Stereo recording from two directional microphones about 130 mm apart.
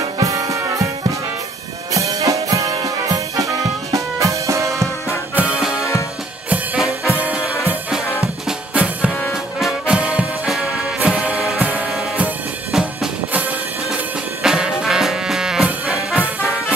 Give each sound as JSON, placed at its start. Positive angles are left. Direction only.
{"t": 0.0, "sound": "music", "side_deg": -25}
{"t": 1.9, "sound": "music", "side_deg": -25}
{"t": 5.3, "sound": "music", "side_deg": -10}
{"t": 5.8, "sound": "music", "side_deg": 25}
{"t": 6.5, "sound": "music", "side_deg": -5}
{"t": 8.5, "sound": "drum kit", "side_deg": -10}
{"t": 9.3, "sound": "music", "side_deg": 0}